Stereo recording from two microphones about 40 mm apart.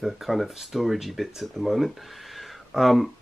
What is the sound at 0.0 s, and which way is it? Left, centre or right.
Speech, centre.